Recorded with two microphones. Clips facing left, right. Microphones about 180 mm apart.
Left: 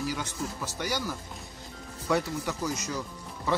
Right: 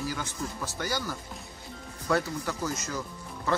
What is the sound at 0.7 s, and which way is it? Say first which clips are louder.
Speech: even; 20° left (ahead or behind).